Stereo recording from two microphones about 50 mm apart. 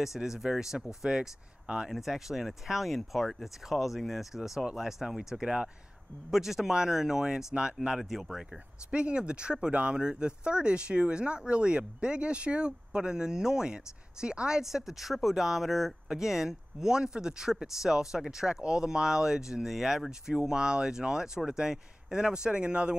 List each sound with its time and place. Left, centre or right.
0.0 s speech: centre
8.0 s speech: centre
8.9 s speech: right
14.6 s speech: centre; by 22.9 s right